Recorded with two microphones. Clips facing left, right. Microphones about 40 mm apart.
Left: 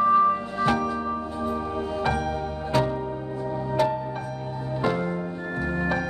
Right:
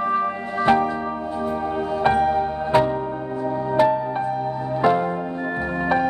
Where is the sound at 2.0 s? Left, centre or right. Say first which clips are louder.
Right 10 dB; right.